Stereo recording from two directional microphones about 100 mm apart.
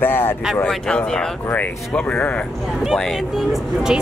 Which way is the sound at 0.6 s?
10° left (ahead or behind).